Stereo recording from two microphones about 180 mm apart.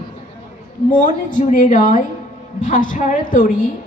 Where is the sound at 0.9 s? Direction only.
45° left (ahead or behind).